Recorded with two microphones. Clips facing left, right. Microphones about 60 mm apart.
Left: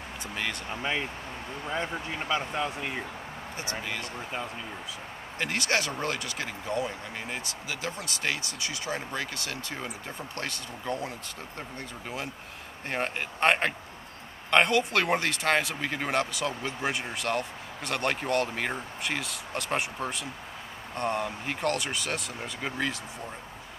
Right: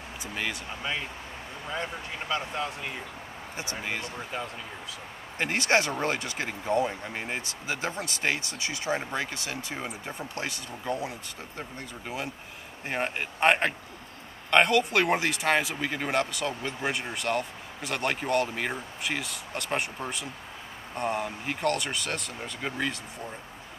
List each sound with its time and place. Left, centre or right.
0.2 s speech: centre
2.2 s speech: centre
3.8 s speech: right
5.4 s speech: right; by 11.1 s centre
12.8 s speech: centre